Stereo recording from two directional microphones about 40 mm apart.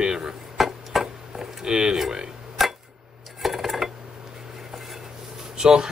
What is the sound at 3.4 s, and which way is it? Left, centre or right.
Dishes, centre.